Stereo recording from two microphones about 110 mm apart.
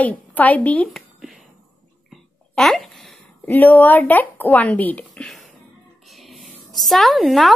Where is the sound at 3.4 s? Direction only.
15° left (ahead or behind).